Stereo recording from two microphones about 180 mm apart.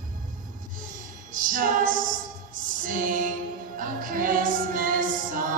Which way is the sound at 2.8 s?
50° right (ahead or behind).